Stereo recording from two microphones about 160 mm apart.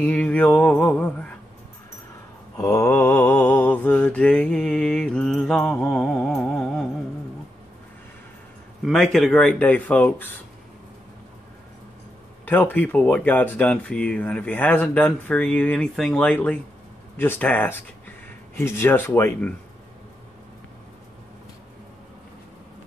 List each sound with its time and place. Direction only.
0.0 s speech: 10° left (ahead or behind)
2.5 s mantra: 15° left (ahead or behind); by 6.9 s centre (ahead or behind)
8.8 s speech: 5° left (ahead or behind)
12.4 s speech: 10° left (ahead or behind)